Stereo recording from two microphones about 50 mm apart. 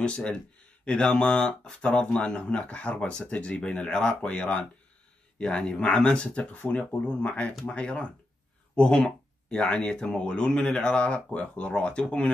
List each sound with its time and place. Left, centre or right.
0.0 s speech: left